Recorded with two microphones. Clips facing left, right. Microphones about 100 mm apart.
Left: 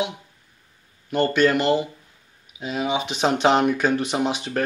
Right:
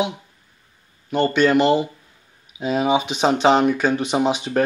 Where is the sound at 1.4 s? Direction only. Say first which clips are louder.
Right 4 dB; 20° right (ahead or behind).